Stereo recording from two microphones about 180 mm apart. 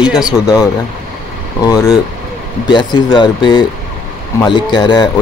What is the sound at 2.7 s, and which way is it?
Speech, 25° left (ahead or behind).